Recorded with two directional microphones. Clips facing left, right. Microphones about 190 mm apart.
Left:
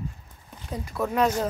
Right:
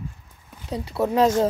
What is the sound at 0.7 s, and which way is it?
Speech, 30° right (ahead or behind).